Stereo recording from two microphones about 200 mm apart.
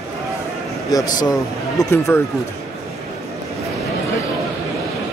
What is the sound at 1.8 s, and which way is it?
Speech, 15° left (ahead or behind).